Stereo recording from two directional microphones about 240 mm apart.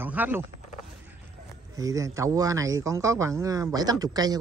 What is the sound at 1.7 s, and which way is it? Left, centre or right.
A man's voice, centre.